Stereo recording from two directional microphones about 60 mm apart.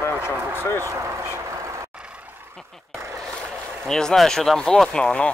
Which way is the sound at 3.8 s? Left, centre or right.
Centre.